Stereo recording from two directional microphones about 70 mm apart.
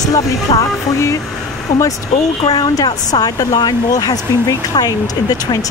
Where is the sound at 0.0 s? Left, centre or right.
Left.